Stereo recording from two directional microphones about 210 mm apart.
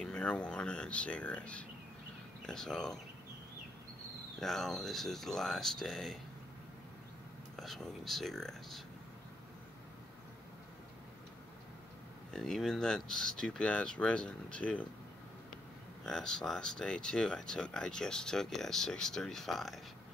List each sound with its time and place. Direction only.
0.0 s speech: 5° left (ahead or behind)
4.4 s speech: centre (ahead or behind)
7.5 s speech: centre (ahead or behind)
12.3 s speech: 5° left (ahead or behind)
16.1 s speech: 5° left (ahead or behind)